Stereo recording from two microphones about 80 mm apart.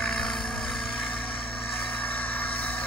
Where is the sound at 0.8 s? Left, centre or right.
Centre.